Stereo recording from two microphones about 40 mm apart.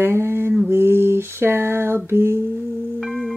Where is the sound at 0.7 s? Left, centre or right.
Right.